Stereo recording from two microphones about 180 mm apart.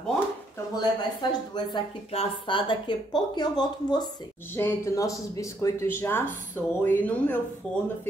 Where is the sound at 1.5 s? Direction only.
25° left (ahead or behind).